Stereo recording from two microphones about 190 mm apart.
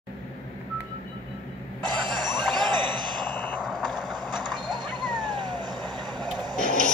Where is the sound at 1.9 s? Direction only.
25° right (ahead or behind).